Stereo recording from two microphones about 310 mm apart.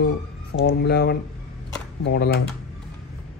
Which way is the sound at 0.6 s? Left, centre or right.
Left.